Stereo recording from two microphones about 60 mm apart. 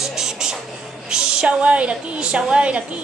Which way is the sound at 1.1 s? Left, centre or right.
Centre.